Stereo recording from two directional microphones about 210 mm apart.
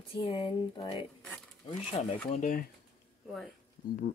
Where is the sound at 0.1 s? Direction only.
25° left (ahead or behind).